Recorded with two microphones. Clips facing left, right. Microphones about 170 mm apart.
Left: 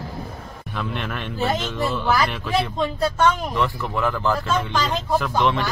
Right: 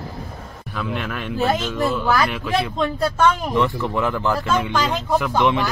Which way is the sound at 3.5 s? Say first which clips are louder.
Right 4 dB; 20° right (ahead or behind).